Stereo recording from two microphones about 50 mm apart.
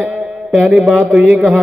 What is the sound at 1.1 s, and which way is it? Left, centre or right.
Speech, right.